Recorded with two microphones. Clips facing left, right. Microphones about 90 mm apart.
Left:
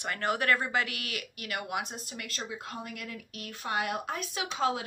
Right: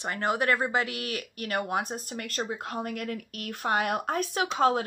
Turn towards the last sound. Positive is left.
turn(degrees=-45)  # may be behind; listen again after turning